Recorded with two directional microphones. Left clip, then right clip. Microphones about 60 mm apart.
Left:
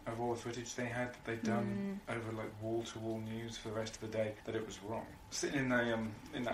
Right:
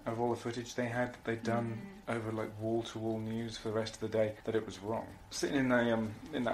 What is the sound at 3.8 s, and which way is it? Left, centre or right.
Speech, right.